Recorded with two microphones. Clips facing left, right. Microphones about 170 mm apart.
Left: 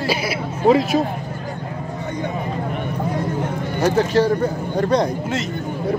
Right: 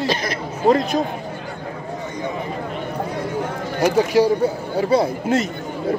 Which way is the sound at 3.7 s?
10° right (ahead or behind).